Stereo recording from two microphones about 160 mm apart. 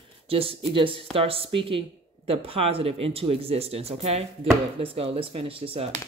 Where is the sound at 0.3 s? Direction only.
35° right (ahead or behind).